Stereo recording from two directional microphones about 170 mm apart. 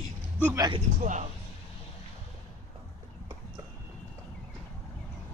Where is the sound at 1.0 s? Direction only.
45° right (ahead or behind).